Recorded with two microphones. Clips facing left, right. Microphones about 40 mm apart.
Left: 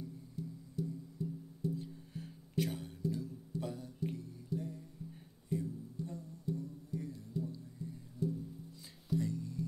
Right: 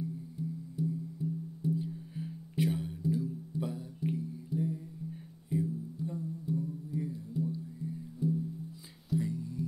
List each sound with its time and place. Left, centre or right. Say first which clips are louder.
0.4 s music: right 5 dB; centre